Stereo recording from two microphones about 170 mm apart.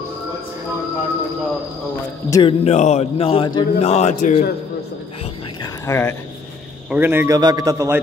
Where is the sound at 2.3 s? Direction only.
30° left (ahead or behind).